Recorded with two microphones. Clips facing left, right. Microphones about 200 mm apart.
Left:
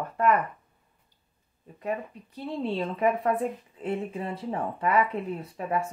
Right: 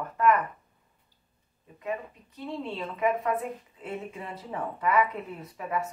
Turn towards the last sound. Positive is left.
turn(degrees=30)  # may be behind; listen again after turning